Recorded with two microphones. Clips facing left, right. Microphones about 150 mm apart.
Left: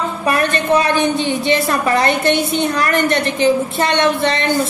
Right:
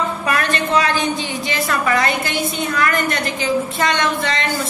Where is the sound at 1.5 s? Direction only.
30° left (ahead or behind).